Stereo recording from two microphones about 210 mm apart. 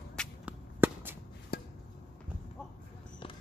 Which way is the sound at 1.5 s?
45° left (ahead or behind).